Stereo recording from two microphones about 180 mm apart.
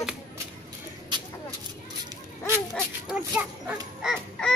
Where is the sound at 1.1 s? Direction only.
25° right (ahead or behind).